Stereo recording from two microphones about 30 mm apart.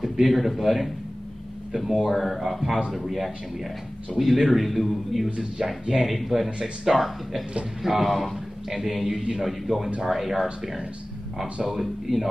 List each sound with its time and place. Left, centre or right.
0.2 s a man's voice: centre
5.6 s a man's voice: centre
6.0 s a man's voice: centre
11.6 s a man's voice: centre